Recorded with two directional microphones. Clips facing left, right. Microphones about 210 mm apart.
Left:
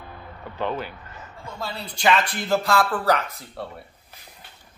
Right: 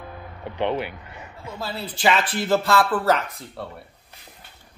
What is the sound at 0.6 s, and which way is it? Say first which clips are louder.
A man's voice: right 3 dB; 20° right (ahead or behind).